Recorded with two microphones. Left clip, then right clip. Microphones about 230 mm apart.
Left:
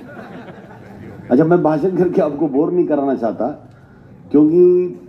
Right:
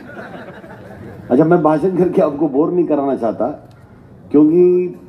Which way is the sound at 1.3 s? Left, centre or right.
Left.